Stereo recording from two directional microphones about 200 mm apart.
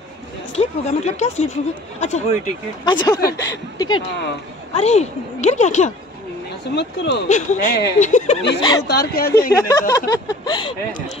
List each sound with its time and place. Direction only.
0.6 s speech: 35° left (ahead or behind)
2.8 s a woman's voice: 20° left (ahead or behind)
4.7 s speech: 35° left (ahead or behind)
6.7 s speech: 60° left (ahead or behind)
7.2 s speech: 40° left (ahead or behind)
8.5 s speech: 20° left (ahead or behind)
8.8 s speech: 50° left (ahead or behind)
9.6 s speech: 15° left (ahead or behind)